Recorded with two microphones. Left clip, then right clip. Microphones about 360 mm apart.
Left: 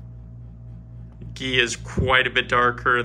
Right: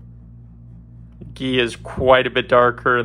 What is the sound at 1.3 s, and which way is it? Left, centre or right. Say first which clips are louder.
Speech: right 1 dB; centre.